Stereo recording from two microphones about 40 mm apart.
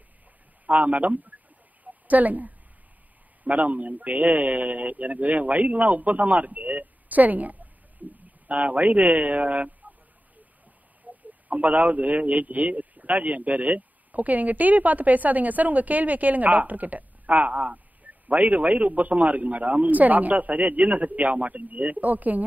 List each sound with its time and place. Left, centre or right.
0.7 s a man's voice: right
11.1 s a sound: right
11.4 s a man's voice: right